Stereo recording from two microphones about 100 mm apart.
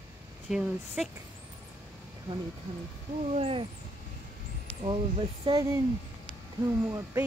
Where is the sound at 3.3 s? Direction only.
80° right.